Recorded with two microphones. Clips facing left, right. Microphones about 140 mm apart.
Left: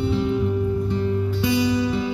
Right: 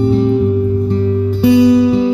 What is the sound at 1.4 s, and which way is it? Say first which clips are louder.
Music: right 13 dB; 35° right (ahead or behind).